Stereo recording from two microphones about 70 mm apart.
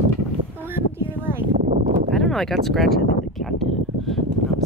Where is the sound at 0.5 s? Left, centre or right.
Right.